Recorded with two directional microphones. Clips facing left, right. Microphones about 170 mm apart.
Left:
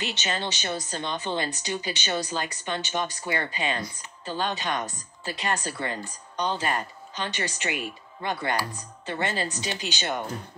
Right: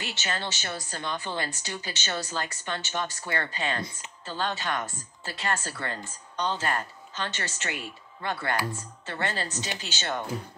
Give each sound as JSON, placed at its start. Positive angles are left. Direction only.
{"t": 0.0, "sound": "speech", "side_deg": 20}